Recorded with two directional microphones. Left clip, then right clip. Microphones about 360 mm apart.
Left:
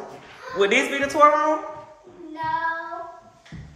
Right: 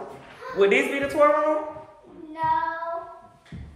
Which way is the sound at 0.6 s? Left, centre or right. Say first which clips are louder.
Even; centre.